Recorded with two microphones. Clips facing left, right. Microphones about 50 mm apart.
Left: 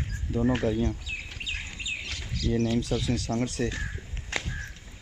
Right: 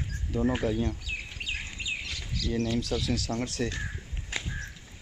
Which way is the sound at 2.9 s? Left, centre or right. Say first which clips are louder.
Left 2 dB; centre.